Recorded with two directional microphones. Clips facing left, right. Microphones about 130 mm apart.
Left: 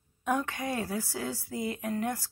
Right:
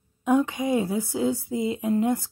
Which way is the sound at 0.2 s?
20° right (ahead or behind).